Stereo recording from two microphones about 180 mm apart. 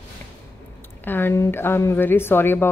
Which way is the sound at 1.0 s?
10° left (ahead or behind).